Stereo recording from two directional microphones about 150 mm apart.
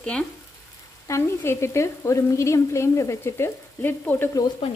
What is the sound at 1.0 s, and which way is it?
Frying, 20° left (ahead or behind).